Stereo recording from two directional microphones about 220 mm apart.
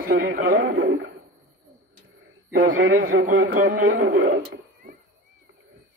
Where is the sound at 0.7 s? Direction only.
60° right (ahead or behind).